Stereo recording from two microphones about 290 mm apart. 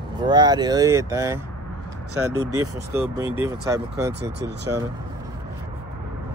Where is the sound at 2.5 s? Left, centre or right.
Centre.